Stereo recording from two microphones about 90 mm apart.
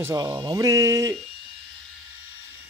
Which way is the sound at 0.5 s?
35° right (ahead or behind).